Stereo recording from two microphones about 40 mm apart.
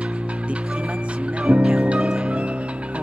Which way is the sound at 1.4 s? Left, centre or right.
Right.